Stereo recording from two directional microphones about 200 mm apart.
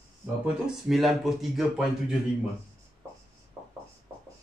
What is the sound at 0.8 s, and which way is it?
Speech, centre (ahead or behind).